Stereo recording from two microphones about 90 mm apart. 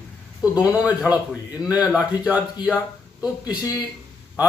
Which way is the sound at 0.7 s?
15° right (ahead or behind).